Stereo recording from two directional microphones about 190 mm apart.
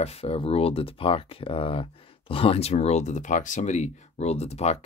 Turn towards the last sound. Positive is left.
turn(degrees=35)  # may be behind; listen again after turning